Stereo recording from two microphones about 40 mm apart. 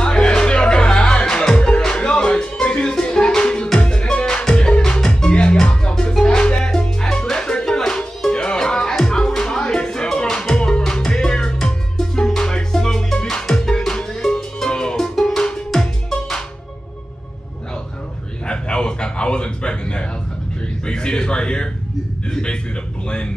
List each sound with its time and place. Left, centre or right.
0.0 s music: left
15.0 s music: centre
15.4 s tabla: centre
15.8 s music: centre
18.5 s a sound: left